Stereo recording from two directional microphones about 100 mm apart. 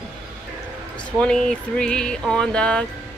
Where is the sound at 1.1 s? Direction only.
10° left (ahead or behind).